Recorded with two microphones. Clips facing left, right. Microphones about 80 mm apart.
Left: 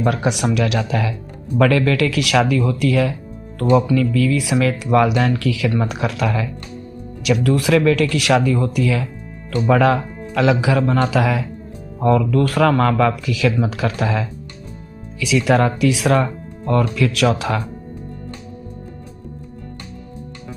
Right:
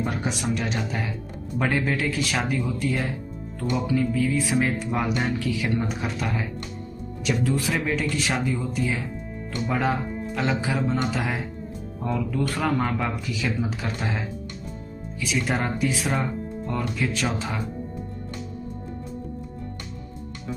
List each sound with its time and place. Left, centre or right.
0.0 s speech: left